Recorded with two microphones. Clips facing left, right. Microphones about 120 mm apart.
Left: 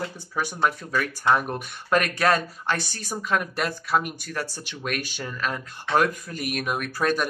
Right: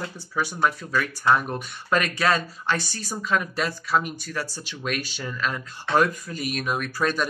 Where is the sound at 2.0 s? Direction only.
50° left (ahead or behind).